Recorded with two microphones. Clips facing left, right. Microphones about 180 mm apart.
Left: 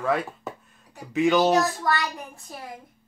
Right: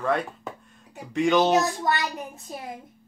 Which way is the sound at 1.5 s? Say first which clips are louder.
Even; 20° right (ahead or behind).